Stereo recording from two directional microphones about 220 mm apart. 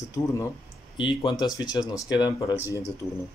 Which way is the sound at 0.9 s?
20° left (ahead or behind).